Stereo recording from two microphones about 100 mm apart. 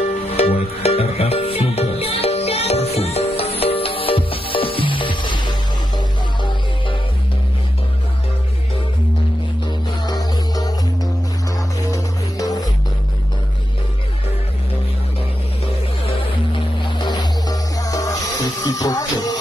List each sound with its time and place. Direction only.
0.3 s music: 90° left
1.8 s music: 90° left; by 7.0 s 50° left (ahead or behind)
10.0 s music: 40° left (ahead or behind)
11.9 s music: 35° left (ahead or behind)
17.0 s music: 45° left (ahead or behind)